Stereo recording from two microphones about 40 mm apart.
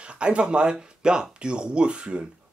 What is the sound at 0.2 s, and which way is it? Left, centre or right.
Speech, right.